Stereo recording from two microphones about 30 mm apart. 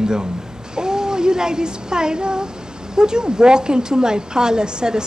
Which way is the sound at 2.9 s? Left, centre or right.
Right.